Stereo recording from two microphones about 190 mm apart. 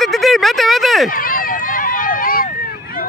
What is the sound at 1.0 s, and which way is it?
Run, 45° left (ahead or behind).